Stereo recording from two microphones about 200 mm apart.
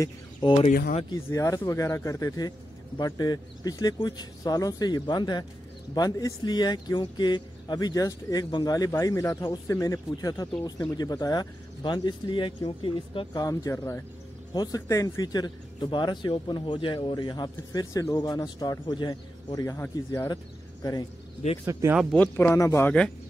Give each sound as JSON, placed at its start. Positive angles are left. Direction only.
{"t": 0.0, "sound": "speech", "side_deg": 20}
{"t": 0.7, "sound": "speech", "side_deg": 40}
{"t": 1.1, "sound": "a man's voice", "side_deg": 15}
{"t": 21.6, "sound": "speech", "side_deg": -15}
{"t": 22.1, "sound": "a man's voice", "side_deg": 10}